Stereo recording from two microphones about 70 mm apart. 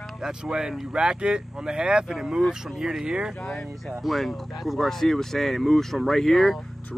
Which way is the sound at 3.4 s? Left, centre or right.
Centre.